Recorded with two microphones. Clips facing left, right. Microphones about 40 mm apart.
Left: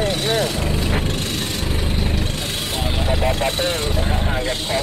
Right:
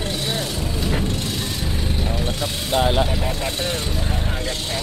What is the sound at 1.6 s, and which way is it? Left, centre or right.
Vehicle, left.